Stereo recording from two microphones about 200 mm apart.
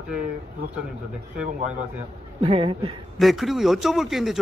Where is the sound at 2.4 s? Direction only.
30° right (ahead or behind).